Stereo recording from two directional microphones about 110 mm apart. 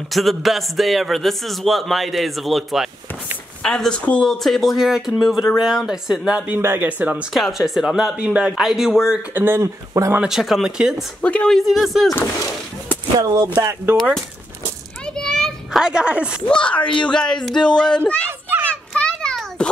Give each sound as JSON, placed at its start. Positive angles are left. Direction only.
{"t": 0.1, "sound": "a man's voice", "side_deg": 0}
{"t": 7.3, "sound": "a man's voice", "side_deg": 0}
{"t": 9.3, "sound": "speech", "side_deg": -20}
{"t": 10.2, "sound": "a man's voice", "side_deg": 0}
{"t": 11.1, "sound": "a man's voice", "side_deg": 10}
{"t": 13.2, "sound": "speech", "side_deg": -30}
{"t": 15.1, "sound": "a sound", "side_deg": 5}
{"t": 15.8, "sound": "speech", "side_deg": -5}
{"t": 16.4, "sound": "speech", "side_deg": 10}
{"t": 18.9, "sound": "a sound", "side_deg": 10}